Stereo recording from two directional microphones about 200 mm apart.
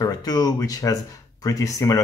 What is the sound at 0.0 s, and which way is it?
Speech, 20° left (ahead or behind).